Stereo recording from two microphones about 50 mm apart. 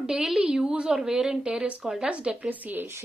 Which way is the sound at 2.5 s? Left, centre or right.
Right.